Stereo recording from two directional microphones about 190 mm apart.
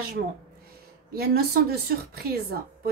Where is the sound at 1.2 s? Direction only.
55° right (ahead or behind).